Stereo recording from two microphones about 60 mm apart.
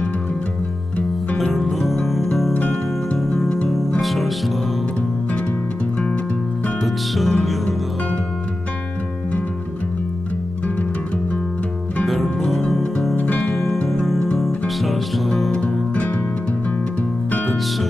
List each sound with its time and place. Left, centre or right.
1.4 s music: centre
2.5 s music: left
3.2 s music: centre
6.8 s music: centre
12.1 s music: centre
13.1 s music: left
13.5 s music: centre
15.5 s music: left